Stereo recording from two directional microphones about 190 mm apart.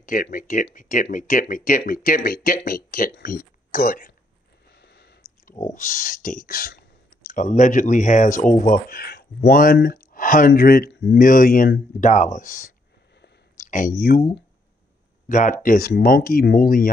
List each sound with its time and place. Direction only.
0.0 s speech: 45° left (ahead or behind)
4.6 s a sound: 60° left (ahead or behind)
5.8 s speech: 45° left (ahead or behind)